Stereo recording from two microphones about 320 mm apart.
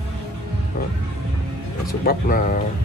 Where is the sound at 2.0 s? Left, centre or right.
Left.